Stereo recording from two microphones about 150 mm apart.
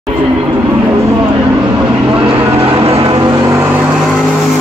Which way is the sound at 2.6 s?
35° right (ahead or behind).